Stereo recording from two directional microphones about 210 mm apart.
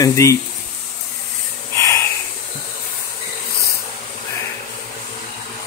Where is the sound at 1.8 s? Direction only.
15° left (ahead or behind).